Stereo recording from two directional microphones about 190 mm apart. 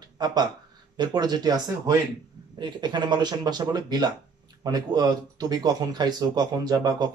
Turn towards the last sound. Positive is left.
turn(degrees=-20)  # may be behind; listen again after turning